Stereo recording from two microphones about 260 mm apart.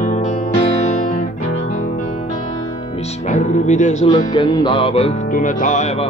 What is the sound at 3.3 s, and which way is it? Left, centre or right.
Music, left.